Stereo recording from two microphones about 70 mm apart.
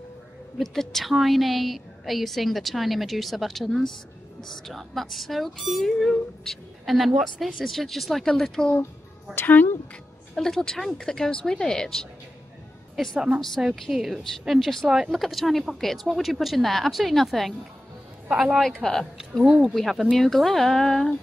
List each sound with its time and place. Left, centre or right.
0.6 s a woman's voice: centre
9.3 s speech: left
10.3 s a woman's voice: centre
18.3 s speech: centre
18.6 s a woman's voice: centre
19.4 s speech: centre
19.7 s a woman's voice: centre